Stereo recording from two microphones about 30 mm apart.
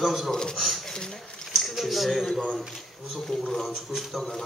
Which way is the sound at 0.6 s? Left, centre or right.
Centre.